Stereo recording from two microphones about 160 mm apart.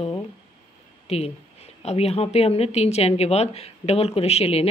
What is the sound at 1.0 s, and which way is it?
A woman's voice, 40° left (ahead or behind).